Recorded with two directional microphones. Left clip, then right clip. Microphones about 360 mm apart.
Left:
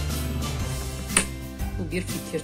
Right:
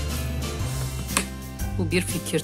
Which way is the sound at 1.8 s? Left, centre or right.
Centre.